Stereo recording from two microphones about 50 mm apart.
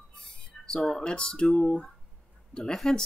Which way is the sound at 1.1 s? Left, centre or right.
Centre.